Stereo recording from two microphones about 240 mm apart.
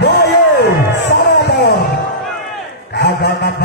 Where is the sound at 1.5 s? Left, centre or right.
Left.